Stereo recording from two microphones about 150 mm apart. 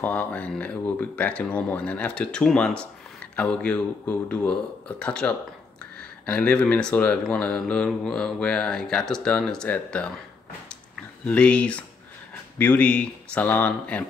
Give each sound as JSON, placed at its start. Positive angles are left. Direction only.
{"t": 0.0, "sound": "speech", "side_deg": 10}
{"t": 11.2, "sound": "speech", "side_deg": 10}